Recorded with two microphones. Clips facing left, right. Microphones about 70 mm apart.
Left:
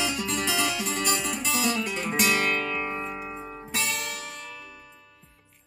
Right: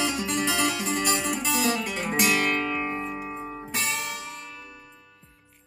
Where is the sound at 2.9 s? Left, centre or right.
Centre.